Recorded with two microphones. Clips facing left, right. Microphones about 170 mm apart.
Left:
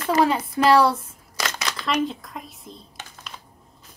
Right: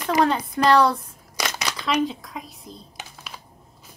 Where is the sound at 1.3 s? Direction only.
10° right (ahead or behind).